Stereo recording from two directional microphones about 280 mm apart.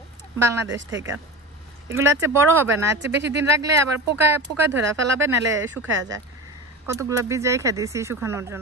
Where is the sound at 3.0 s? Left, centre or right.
Right.